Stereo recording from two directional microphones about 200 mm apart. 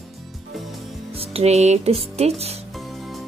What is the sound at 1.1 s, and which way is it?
Speech, 30° right (ahead or behind).